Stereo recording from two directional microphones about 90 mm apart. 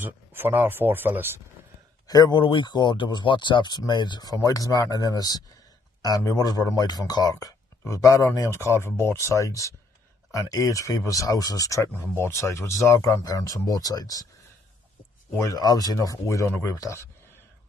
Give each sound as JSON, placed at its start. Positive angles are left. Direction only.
{"t": 0.0, "sound": "speech", "side_deg": -25}
{"t": 2.0, "sound": "a man's voice", "side_deg": 50}
{"t": 2.4, "sound": "speech", "side_deg": 65}
{"t": 11.9, "sound": "speech", "side_deg": 30}
{"t": 15.3, "sound": "speech", "side_deg": 40}